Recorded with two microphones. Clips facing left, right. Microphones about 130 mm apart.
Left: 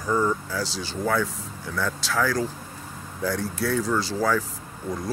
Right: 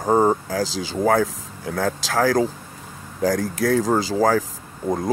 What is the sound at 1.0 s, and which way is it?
Speech, 85° right.